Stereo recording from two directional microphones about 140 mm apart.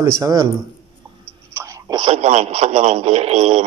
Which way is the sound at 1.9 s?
40° right (ahead or behind).